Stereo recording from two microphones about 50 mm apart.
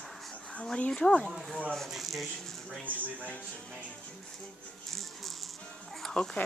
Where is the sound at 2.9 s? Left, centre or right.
Right.